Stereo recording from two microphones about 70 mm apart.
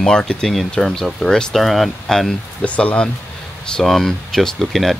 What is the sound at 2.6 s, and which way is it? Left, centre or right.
Speech, centre.